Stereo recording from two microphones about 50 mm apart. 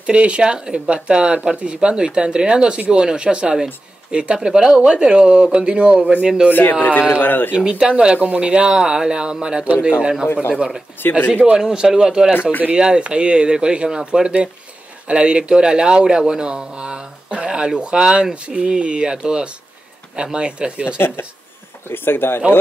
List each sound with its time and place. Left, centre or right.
0.0 s speech: right
6.5 s speech: left
7.5 s speech: centre
10.2 s speech: left
10.5 s speech: centre
11.0 s speech: left
11.2 s speech: right
11.5 s speech: centre
21.8 s speech: left